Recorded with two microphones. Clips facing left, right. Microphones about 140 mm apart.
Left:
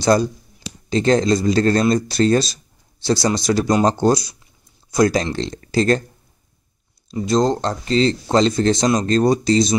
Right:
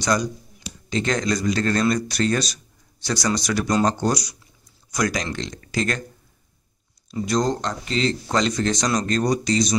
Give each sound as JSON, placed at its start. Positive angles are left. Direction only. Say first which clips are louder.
{"t": 0.0, "sound": "a sound", "louder": "left 6 dB", "side_deg": 30}
{"t": 0.8, "sound": "speech", "louder": "left 7 dB", "side_deg": 30}
{"t": 7.1, "sound": "speech", "louder": "left 5 dB", "side_deg": 25}